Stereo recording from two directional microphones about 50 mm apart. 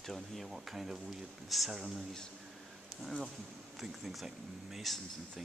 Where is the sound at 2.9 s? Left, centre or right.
Centre.